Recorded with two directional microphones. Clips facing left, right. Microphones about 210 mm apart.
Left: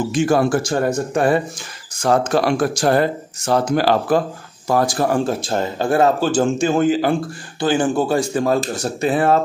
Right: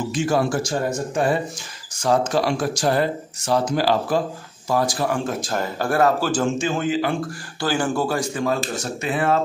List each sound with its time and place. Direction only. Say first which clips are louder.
0.1 s speech: left 4 dB; 55° left (ahead or behind)
5.4 s speech: left 4 dB; 25° left (ahead or behind)
6.4 s speech: left 6 dB; 40° left (ahead or behind)
7.6 s speech: left 4 dB; 20° left (ahead or behind)
8.4 s speech: left 5 dB; 35° left (ahead or behind)